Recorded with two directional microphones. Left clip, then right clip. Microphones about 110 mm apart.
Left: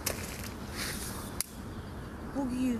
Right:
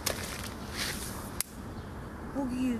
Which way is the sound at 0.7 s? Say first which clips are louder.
Right 3 dB; 5° right (ahead or behind).